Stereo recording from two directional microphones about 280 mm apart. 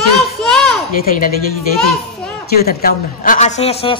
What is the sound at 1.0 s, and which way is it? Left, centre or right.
Speech, left.